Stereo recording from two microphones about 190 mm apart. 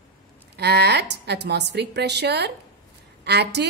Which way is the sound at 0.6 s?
60° right (ahead or behind).